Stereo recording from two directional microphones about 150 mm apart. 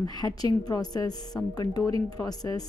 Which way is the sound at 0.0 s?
25° left (ahead or behind).